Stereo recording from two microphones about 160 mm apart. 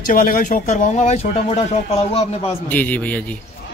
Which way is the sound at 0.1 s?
55° left (ahead or behind).